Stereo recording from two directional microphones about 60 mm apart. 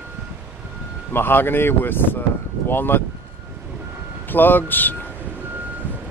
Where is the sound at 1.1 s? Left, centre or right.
Left.